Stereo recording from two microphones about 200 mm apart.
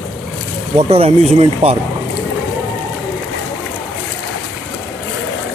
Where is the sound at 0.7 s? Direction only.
30° right (ahead or behind).